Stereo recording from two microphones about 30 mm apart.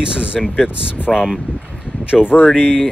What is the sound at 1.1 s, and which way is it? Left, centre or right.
Speech, centre.